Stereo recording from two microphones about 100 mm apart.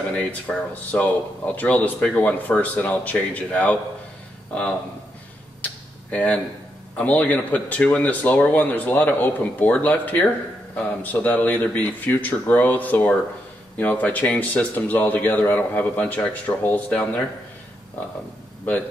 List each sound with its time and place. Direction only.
0.1 s speech: 15° left (ahead or behind)
5.6 s a sound: 15° left (ahead or behind)
7.0 s speech: 15° left (ahead or behind)